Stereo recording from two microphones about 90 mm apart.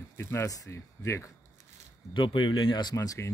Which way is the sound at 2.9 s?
40° left (ahead or behind).